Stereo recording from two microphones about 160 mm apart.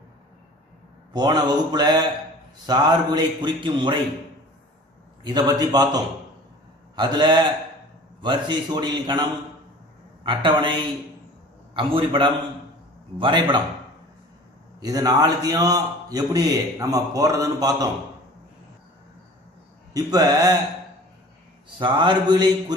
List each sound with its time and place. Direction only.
1.1 s a man's voice: 25° right (ahead or behind)
5.2 s a man's voice: 25° right (ahead or behind)
10.2 s a woman's voice: 30° right (ahead or behind)
14.8 s a man's voice: 25° right (ahead or behind)
19.9 s a man's voice: 25° right (ahead or behind)
21.7 s a man's voice: 30° right (ahead or behind)